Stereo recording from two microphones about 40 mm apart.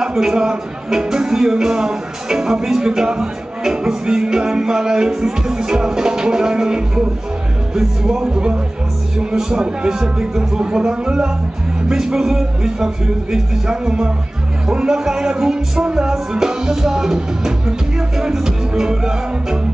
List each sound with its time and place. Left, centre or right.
0.0 s speech: centre